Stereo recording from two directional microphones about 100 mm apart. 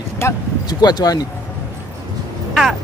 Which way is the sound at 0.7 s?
40° left (ahead or behind).